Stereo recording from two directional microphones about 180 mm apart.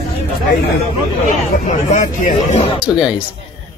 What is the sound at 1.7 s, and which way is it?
Speech, 45° left (ahead or behind).